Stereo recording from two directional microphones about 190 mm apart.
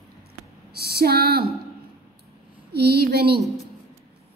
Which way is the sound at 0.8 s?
55° right (ahead or behind).